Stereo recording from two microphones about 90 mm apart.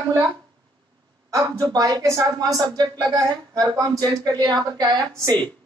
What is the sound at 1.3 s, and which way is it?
Speech, 45° right (ahead or behind).